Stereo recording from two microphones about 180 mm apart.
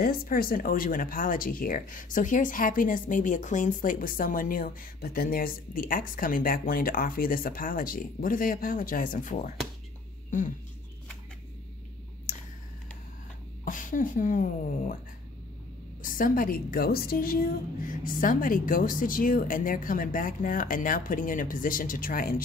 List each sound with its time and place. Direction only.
0.0 s speech: 55° left (ahead or behind)
13.7 s speech: 45° left (ahead or behind)
16.0 s speech: 50° left (ahead or behind)